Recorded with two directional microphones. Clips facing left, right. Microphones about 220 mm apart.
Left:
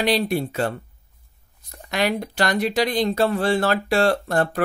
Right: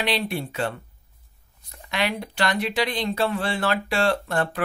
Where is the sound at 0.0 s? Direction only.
40° left (ahead or behind).